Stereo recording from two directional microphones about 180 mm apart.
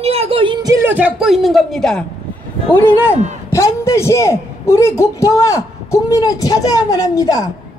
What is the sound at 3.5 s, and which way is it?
A man's voice, 15° left (ahead or behind).